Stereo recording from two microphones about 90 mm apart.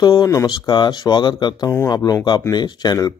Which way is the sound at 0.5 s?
55° left (ahead or behind).